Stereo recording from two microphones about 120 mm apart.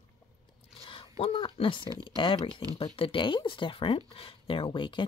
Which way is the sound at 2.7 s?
50° left (ahead or behind).